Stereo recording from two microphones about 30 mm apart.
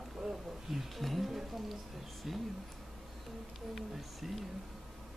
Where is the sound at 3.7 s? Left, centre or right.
Centre.